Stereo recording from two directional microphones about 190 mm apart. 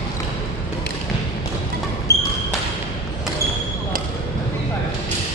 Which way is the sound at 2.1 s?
15° left (ahead or behind).